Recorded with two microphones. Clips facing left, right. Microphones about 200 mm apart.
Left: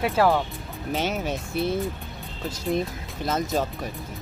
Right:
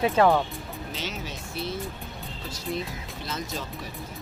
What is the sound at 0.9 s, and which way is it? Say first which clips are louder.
Speech: left 11 dB; 55° left (ahead or behind).